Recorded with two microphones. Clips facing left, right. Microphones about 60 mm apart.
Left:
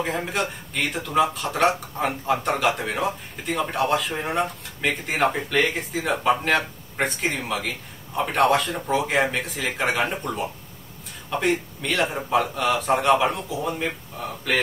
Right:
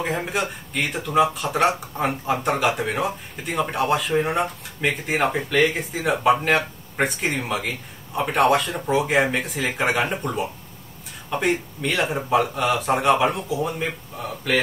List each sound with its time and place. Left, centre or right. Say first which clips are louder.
0.0 s speech: right 1 dB; centre